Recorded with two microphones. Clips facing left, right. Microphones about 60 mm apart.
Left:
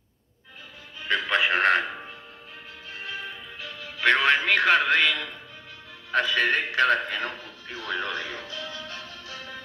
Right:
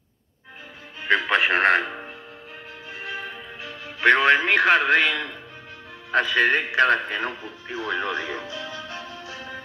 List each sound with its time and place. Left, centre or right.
1.0 s music: right
1.9 s music: right
6.1 s speech: right